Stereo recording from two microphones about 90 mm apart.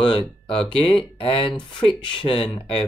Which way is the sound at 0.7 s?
80° left.